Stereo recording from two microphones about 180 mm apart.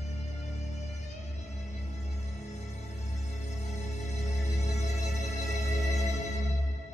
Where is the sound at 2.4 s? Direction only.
40° left (ahead or behind).